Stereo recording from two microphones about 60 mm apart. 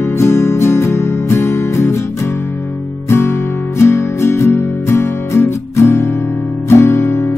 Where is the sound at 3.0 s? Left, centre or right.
Left.